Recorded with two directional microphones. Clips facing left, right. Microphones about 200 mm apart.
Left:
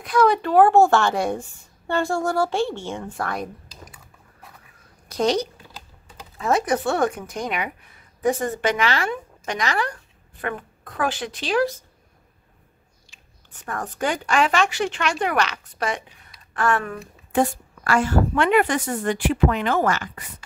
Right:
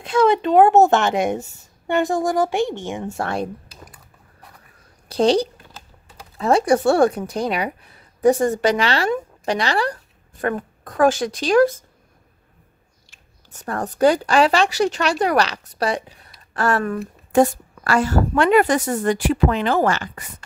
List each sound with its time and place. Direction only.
0.0 s a child's voice: 25° right (ahead or behind)
5.0 s a woman's voice: 30° right (ahead or behind)
13.5 s a woman's voice: 35° right (ahead or behind)